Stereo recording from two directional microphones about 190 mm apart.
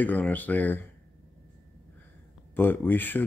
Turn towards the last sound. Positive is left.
turn(degrees=10)  # may be behind; listen again after turning